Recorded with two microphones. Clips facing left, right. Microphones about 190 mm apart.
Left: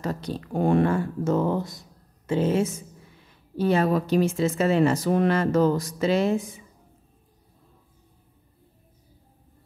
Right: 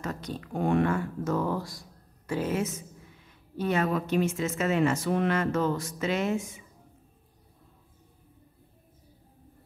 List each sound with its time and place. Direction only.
0.0 s a woman's voice: 30° left (ahead or behind)